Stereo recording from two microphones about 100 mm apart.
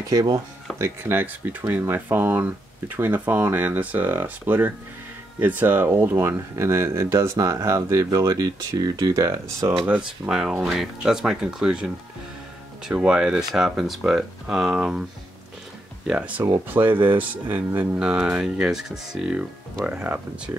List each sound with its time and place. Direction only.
0.0 s speech: 40° right (ahead or behind)
0.7 s speech: 25° right (ahead or behind)
9.8 s speech: 10° right (ahead or behind)
16.1 s speech: 15° right (ahead or behind)